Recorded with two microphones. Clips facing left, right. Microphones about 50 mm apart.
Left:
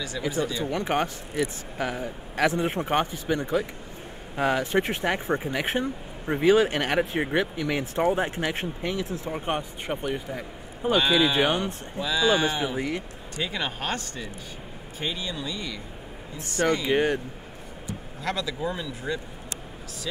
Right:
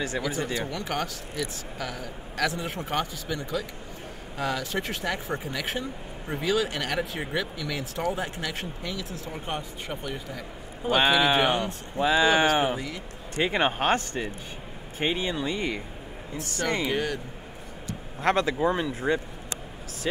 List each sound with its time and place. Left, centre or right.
0.3 s speech: right
0.7 s speech: left
10.9 s speech: right
12.7 s speech: left
13.4 s speech: right
16.6 s speech: left
18.2 s speech: right